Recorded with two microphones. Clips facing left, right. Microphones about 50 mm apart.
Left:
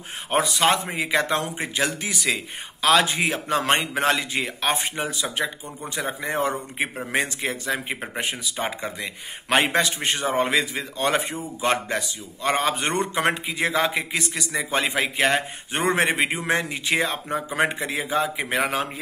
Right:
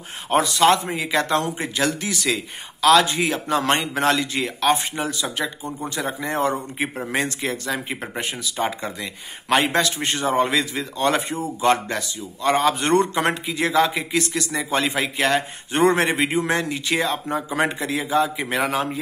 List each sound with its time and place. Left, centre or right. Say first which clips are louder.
0.3 s speech: right 4 dB; centre
5.4 s a man's voice: right 2 dB; centre